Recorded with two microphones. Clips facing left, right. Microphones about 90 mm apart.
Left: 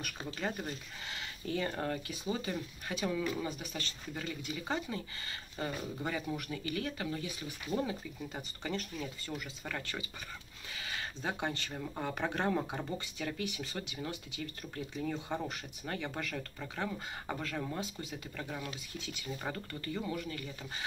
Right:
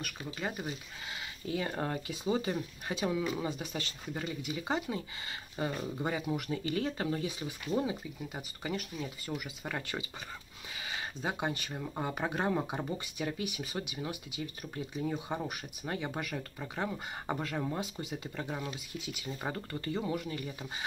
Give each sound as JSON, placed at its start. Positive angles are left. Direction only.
{"t": 0.3, "sound": "speech", "side_deg": -5}
{"t": 1.8, "sound": "speech", "side_deg": -25}
{"t": 7.2, "sound": "speech", "side_deg": -20}